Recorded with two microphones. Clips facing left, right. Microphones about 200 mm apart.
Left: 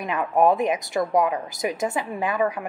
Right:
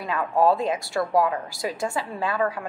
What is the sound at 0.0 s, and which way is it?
A woman's voice, 20° left (ahead or behind).